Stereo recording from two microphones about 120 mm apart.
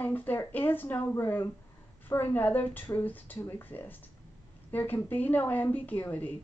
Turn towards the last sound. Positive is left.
turn(degrees=15)  # may be behind; listen again after turning